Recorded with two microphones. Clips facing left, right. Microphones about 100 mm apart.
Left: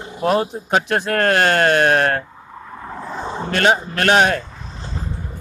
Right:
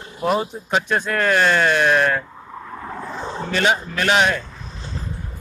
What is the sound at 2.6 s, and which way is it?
Vehicle, 10° left (ahead or behind).